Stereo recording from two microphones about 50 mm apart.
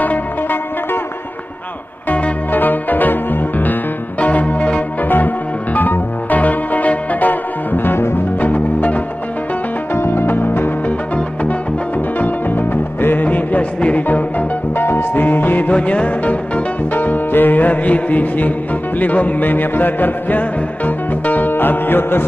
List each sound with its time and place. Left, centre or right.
0.0 s music: left
2.0 s music: left
8.4 s music: left
9.9 s music: left
12.2 s music: left
14.8 s music: left
15.7 s music: left
16.9 s music: left